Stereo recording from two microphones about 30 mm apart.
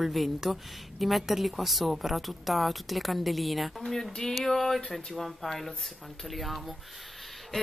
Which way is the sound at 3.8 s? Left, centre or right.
Centre.